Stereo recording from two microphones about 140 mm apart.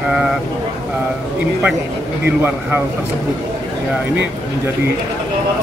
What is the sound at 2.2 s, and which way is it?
Speech, 15° right (ahead or behind).